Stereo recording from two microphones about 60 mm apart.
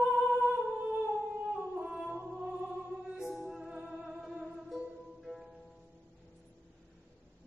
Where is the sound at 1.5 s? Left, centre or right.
Centre.